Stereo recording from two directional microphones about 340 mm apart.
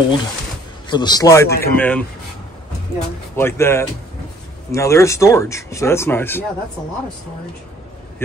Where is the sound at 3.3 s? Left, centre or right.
Centre.